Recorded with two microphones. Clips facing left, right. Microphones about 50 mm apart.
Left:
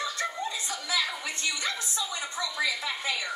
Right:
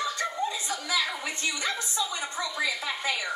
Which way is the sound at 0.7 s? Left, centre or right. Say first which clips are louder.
Right 1 dB; centre.